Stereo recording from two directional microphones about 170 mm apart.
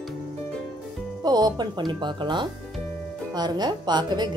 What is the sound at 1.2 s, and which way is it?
A woman's voice, 25° right (ahead or behind).